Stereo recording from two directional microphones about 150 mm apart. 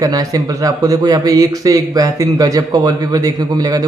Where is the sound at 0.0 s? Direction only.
25° right (ahead or behind).